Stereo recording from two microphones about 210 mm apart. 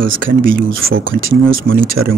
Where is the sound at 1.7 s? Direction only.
45° right (ahead or behind).